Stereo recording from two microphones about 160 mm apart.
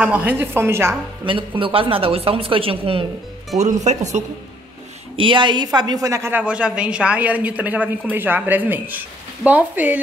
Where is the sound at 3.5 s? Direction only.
45° right (ahead or behind).